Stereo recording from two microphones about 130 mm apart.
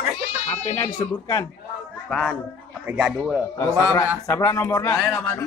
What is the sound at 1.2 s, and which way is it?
Speech, 30° left (ahead or behind).